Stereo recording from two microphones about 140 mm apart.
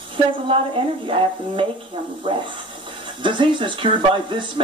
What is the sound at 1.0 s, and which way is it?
Speech, 40° right (ahead or behind).